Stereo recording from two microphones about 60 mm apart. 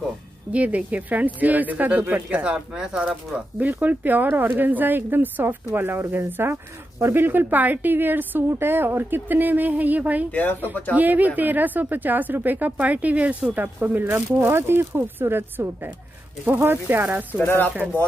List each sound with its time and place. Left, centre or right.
0.5 s speech: right
2.5 s speech: centre; by 7.2 s right
7.2 s speech: right
10.3 s speech: left
11.0 s speech: right
17.4 s speech: left